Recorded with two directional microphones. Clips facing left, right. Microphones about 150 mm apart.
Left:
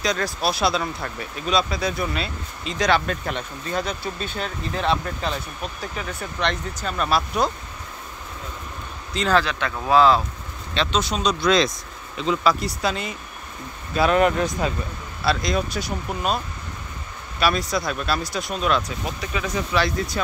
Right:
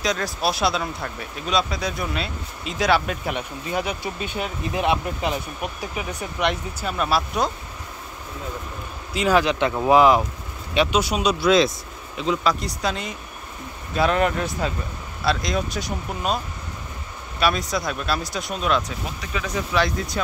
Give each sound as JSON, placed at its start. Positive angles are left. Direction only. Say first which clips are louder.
{"t": 0.0, "sound": "speech", "louder": "even", "side_deg": 0}
{"t": 9.1, "sound": "speech", "louder": "right 2 dB", "side_deg": -10}
{"t": 14.2, "sound": "speech", "louder": "left 3 dB", "side_deg": 20}
{"t": 15.2, "sound": "speech", "louder": "left 1 dB", "side_deg": 0}
{"t": 17.4, "sound": "speech", "louder": "even", "side_deg": 0}